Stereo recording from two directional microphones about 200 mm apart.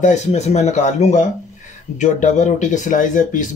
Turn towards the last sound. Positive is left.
turn(degrees=40)  # may be behind; listen again after turning